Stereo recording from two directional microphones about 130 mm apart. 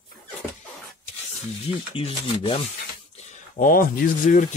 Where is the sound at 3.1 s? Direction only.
80° left.